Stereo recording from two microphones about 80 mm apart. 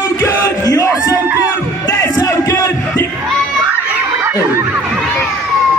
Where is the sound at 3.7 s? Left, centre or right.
Right.